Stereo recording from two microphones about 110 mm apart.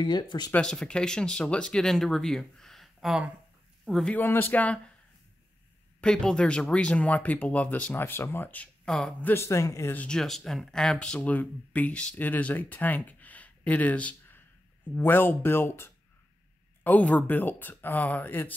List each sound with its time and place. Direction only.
0.0 s speech: 40° left (ahead or behind)
0.5 s speech: 5° left (ahead or behind)
4.1 s speech: 20° left (ahead or behind)
5.9 s speech: 5° left (ahead or behind)
9.3 s speech: 25° left (ahead or behind)
9.9 s speech: 5° left (ahead or behind)